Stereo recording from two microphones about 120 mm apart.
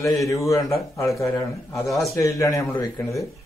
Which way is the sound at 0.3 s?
30° left (ahead or behind).